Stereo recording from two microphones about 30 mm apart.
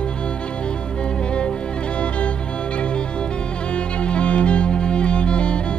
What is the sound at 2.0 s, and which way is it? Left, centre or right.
Music, left.